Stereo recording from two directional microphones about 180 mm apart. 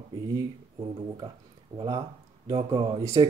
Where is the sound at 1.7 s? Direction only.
20° right (ahead or behind).